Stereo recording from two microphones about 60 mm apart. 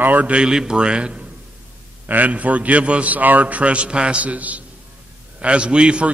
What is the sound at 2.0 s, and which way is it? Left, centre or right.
A man's voice, right.